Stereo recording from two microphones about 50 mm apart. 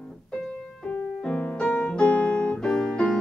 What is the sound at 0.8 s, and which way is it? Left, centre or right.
Music, left.